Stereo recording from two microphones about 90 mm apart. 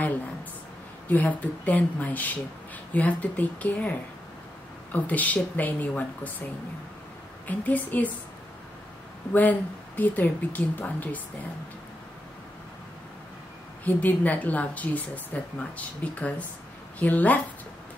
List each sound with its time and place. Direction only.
1.0 s speech: 20° left (ahead or behind)
4.9 s speech: 15° left (ahead or behind)
7.4 s speech: 20° left (ahead or behind)
9.3 s a woman's voice: 20° left (ahead or behind)
13.8 s speech: 20° left (ahead or behind)